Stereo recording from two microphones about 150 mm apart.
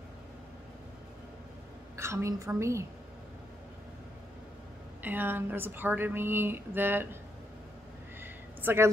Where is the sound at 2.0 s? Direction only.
20° right (ahead or behind).